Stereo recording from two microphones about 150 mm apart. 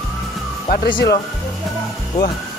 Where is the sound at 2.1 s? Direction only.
30° left (ahead or behind).